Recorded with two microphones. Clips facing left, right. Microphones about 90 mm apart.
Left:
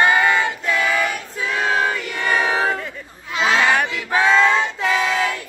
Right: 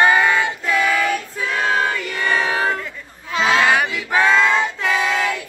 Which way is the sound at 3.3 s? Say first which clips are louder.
Right 1 dB; centre (ahead or behind).